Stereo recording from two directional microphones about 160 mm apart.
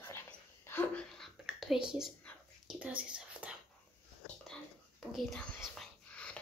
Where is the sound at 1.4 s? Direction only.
5° right (ahead or behind).